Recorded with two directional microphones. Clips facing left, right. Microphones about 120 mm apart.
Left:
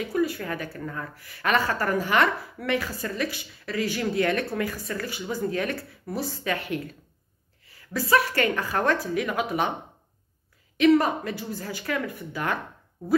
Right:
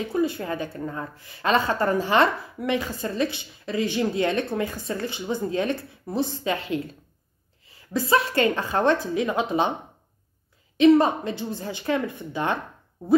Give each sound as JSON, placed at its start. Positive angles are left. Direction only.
{"t": 0.0, "sound": "a woman's voice", "side_deg": -25}
{"t": 10.8, "sound": "a woman's voice", "side_deg": -25}